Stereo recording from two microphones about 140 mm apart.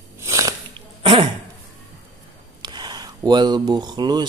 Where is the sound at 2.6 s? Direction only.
30° right (ahead or behind).